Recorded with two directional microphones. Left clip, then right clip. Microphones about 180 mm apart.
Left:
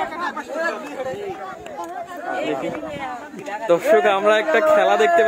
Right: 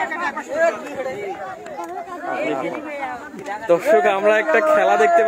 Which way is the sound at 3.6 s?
10° left (ahead or behind).